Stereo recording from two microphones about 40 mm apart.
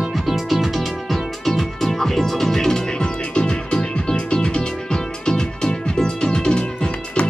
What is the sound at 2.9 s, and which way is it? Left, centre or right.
Music, left.